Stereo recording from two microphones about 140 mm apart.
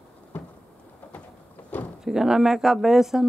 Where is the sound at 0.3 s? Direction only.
10° left (ahead or behind).